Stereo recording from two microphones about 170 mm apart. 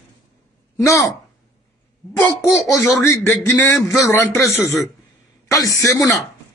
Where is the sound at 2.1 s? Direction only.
15° left (ahead or behind).